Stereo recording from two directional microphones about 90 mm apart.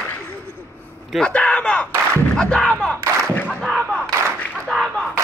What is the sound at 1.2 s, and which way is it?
Speech, 15° left (ahead or behind).